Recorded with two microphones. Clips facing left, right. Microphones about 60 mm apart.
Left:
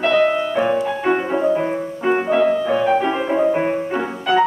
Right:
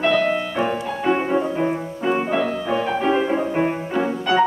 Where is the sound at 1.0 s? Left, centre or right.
Centre.